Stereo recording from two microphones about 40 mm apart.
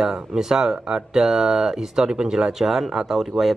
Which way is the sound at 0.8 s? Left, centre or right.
Right.